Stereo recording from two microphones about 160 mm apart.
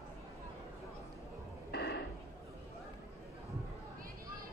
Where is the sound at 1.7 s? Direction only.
90° left.